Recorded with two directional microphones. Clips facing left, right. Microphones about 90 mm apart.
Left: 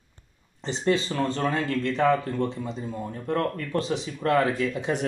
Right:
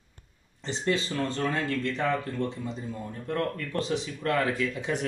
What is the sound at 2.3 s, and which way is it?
Speech, 25° left (ahead or behind).